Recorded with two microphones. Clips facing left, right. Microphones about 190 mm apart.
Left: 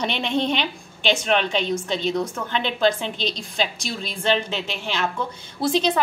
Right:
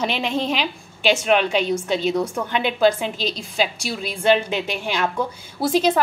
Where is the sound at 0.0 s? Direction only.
5° right (ahead or behind).